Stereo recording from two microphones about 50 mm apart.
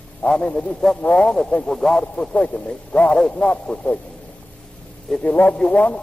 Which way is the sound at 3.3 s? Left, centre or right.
Left.